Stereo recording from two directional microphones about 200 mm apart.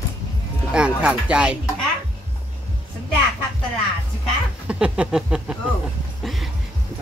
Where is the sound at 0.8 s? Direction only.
5° right (ahead or behind).